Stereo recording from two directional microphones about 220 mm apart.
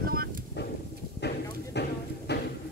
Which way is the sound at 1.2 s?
50° left (ahead or behind).